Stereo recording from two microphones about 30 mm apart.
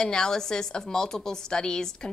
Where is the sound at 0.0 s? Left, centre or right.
Left.